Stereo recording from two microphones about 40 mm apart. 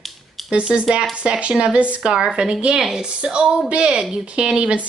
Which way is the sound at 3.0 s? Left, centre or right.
Right.